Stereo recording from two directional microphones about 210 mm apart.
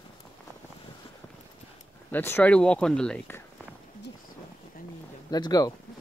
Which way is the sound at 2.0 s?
10° left (ahead or behind).